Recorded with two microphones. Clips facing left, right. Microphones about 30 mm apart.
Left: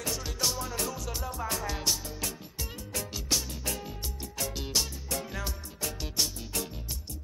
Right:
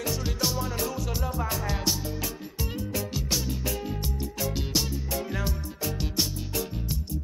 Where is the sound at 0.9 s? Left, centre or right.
Centre.